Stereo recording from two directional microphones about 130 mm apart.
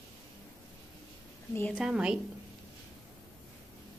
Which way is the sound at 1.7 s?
5° right (ahead or behind).